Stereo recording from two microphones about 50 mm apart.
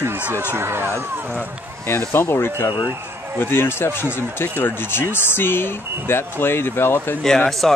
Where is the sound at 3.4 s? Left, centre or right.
Left.